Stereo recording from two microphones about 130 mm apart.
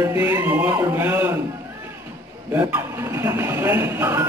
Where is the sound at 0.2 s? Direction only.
15° right (ahead or behind).